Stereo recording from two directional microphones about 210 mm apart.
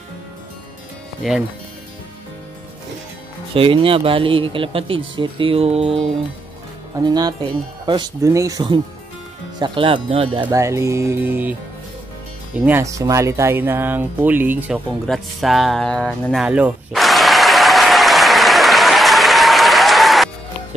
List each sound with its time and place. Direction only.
1.2 s speech: centre (ahead or behind)
3.5 s speech: 25° right (ahead or behind)
7.0 s speech: 20° right (ahead or behind)
10.4 s speech: 15° right (ahead or behind)
12.5 s speech: 10° right (ahead or behind)
15.0 s a sound: centre (ahead or behind)